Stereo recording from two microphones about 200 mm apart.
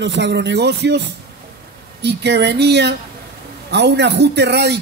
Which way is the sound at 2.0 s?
55° right (ahead or behind).